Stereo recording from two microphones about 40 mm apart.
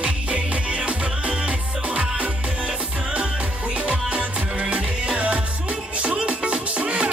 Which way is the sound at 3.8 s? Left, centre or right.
Right.